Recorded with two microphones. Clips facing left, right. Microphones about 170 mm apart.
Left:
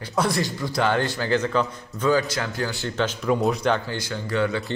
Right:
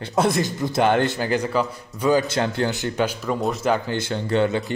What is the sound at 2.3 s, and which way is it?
Speech, 25° right (ahead or behind).